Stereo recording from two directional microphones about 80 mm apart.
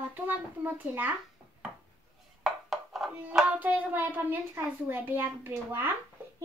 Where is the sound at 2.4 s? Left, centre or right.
Centre.